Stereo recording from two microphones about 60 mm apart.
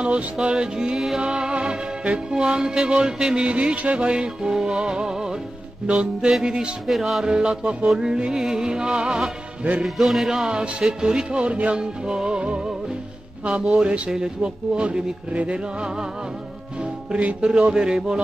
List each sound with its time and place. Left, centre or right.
0.0 s music: centre
6.9 s music: centre
7.3 s music: centre
13.5 s speech: centre
14.1 s music: centre
17.1 s music: centre